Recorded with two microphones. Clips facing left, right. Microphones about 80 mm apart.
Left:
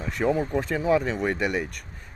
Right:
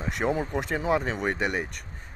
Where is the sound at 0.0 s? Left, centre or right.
Right.